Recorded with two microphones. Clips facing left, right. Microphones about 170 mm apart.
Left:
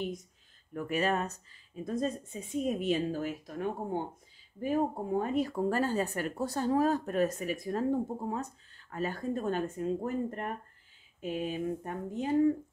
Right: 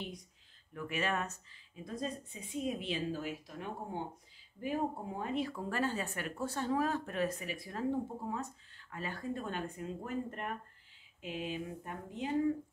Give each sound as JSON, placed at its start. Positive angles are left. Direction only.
{"t": 0.7, "sound": "speech", "side_deg": 40}